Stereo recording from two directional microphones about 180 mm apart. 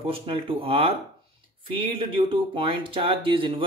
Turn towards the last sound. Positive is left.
turn(degrees=-30)  # may be behind; listen again after turning